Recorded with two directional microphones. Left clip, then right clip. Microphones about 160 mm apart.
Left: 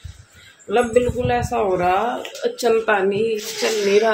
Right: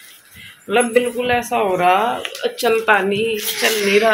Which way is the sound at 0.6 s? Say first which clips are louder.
Right 1 dB; 10° right (ahead or behind).